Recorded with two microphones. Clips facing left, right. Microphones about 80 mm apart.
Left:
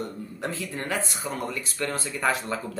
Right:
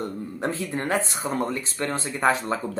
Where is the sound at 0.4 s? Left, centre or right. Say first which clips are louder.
Right 4 dB; right.